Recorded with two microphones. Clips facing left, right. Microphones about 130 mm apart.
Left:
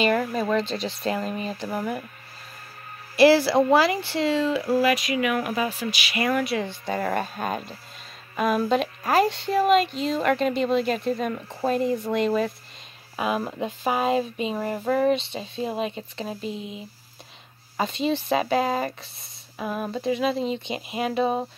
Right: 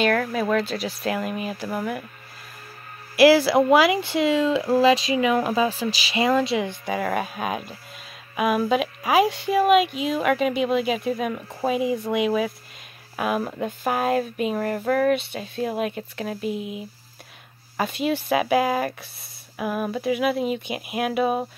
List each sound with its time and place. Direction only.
0.0 s speech: 5° left (ahead or behind)
3.2 s speech: 10° right (ahead or behind)
7.0 s speech: 5° right (ahead or behind)
15.1 s speech: 5° right (ahead or behind)